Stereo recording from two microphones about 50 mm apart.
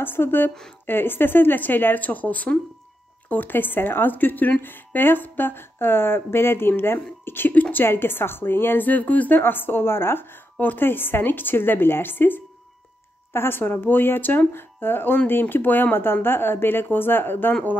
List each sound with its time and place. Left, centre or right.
0.0 s speech: left
9.4 s speech: left